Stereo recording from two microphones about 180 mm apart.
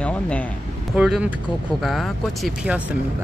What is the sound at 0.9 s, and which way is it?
Speech, 5° right (ahead or behind).